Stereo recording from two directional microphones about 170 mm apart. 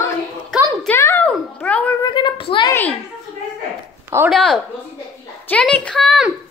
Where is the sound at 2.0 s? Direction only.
25° left (ahead or behind).